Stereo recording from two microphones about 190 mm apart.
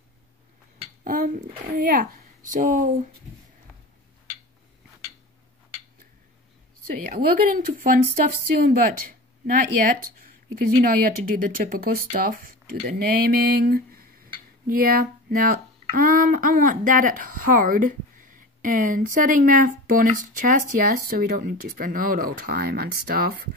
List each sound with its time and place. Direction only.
1.0 s speech: 45° right (ahead or behind)
2.5 s speech: 40° right (ahead or behind)
7.1 s speech: 50° right (ahead or behind)
10.2 s speech: 50° right (ahead or behind)